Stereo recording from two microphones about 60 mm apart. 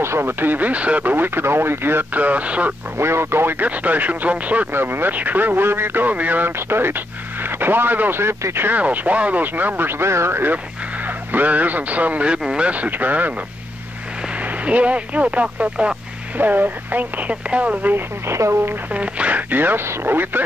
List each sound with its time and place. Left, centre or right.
0.0 s speech: right
1.1 s speech: right
3.0 s speech: right
4.7 s speech: right
6.7 s speech: right
8.6 s speech: right
11.1 s speech: right
14.4 s speech: right
16.3 s speech: right
17.9 s a woman's voice: right
18.9 s speech: right